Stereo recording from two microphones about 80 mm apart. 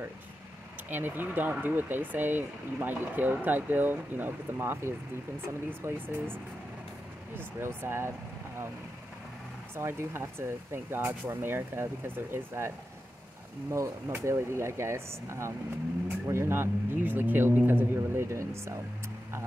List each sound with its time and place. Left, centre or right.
0.8 s speech: right
7.3 s speech: right
9.8 s speech: right
13.7 s speech: right